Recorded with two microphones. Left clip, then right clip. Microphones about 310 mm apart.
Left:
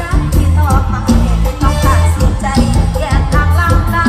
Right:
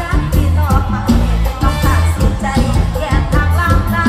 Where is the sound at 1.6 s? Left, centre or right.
Centre.